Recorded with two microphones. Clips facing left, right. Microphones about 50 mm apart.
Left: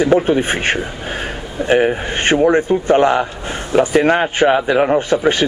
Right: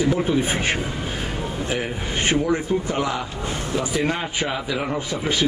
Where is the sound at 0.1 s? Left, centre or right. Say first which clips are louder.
Left 7 dB; left.